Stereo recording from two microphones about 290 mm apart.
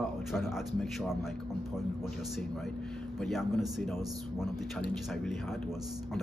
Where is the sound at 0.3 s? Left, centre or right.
Centre.